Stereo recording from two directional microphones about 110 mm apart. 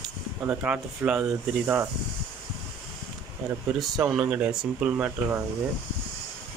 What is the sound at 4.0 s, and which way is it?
Speech, 10° right (ahead or behind).